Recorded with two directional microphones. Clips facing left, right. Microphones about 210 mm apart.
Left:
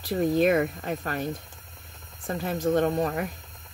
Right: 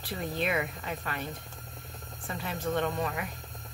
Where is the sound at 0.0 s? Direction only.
40° left (ahead or behind).